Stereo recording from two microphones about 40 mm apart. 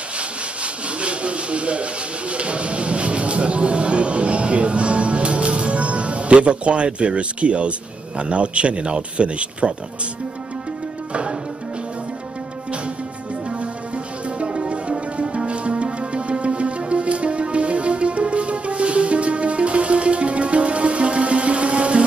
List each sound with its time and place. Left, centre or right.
1.0 s speech: right
14.4 s music: right